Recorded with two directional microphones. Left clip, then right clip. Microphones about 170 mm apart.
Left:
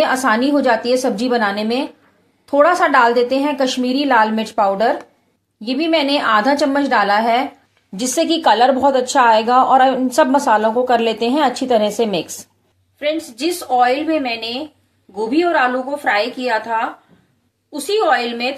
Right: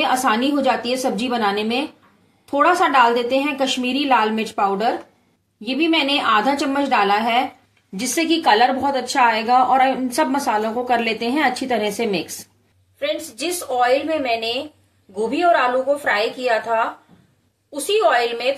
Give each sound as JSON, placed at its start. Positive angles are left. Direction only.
{"t": 0.0, "sound": "a woman's voice", "side_deg": 30}
{"t": 13.4, "sound": "a woman's voice", "side_deg": 25}
{"t": 17.9, "sound": "a woman's voice", "side_deg": 25}